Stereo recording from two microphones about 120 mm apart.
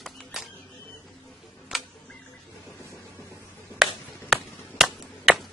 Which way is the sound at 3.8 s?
5° right (ahead or behind).